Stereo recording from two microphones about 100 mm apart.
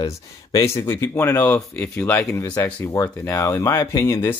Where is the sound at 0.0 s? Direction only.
35° left (ahead or behind).